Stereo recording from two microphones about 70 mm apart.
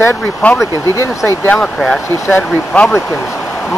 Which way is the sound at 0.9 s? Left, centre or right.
Left.